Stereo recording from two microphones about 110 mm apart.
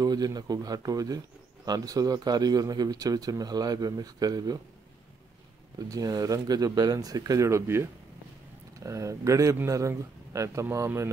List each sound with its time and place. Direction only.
0.0 s speech: 35° right (ahead or behind)
5.8 s a man's voice: 35° right (ahead or behind)